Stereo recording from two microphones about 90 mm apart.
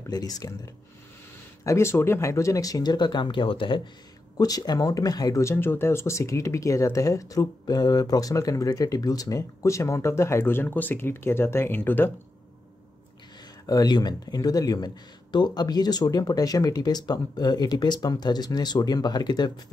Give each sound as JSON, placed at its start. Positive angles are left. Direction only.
{"t": 0.1, "sound": "speech", "side_deg": 45}
{"t": 1.6, "sound": "speech", "side_deg": 30}
{"t": 4.4, "sound": "speech", "side_deg": 45}
{"t": 5.4, "sound": "speech", "side_deg": 30}
{"t": 13.7, "sound": "speech", "side_deg": 45}